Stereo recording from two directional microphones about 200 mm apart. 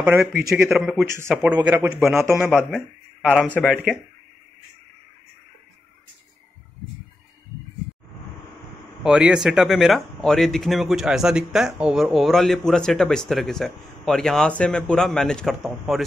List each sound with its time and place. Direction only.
0.5 s speech: centre (ahead or behind)
1.0 s a man's voice: 15° right (ahead or behind)
9.0 s speech: 5° right (ahead or behind)